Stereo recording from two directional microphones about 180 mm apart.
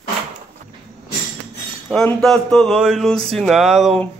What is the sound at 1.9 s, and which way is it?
Speech, 5° left (ahead or behind).